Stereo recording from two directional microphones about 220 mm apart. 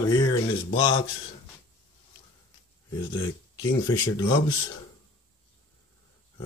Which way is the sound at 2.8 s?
20° left (ahead or behind).